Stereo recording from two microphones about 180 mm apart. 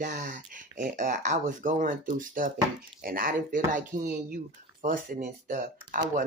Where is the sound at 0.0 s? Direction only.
45° right (ahead or behind).